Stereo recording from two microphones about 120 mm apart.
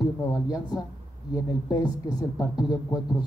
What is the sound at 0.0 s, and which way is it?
Speech, 30° left (ahead or behind).